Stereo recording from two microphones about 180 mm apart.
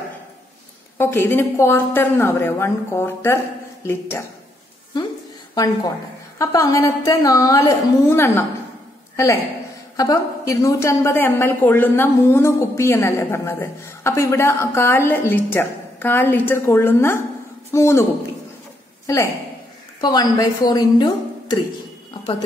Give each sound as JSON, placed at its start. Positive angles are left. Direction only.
{"t": 0.9, "sound": "a woman's voice", "side_deg": 10}
{"t": 5.5, "sound": "a woman's voice", "side_deg": 20}
{"t": 19.0, "sound": "speech", "side_deg": 20}